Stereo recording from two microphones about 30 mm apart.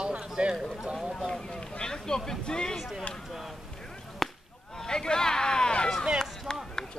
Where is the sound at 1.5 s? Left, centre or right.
Left.